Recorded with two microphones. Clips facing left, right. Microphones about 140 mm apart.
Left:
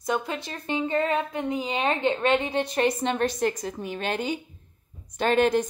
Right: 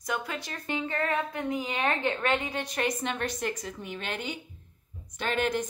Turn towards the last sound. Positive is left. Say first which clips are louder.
# left 7 dB
turn(degrees=35)  # may be behind; listen again after turning